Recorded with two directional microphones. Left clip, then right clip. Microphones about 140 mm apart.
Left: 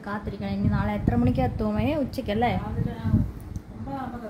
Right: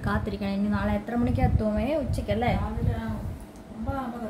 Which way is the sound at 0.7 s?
30° left (ahead or behind).